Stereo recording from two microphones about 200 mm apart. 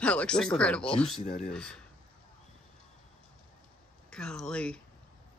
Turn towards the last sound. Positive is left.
turn(degrees=5)  # may be behind; listen again after turning